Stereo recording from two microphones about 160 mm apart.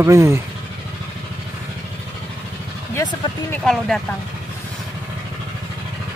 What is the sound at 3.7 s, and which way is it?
Speech, 5° left (ahead or behind).